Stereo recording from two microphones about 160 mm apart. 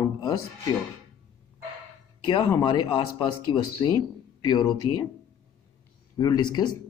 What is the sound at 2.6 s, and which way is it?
Speech, 30° left (ahead or behind).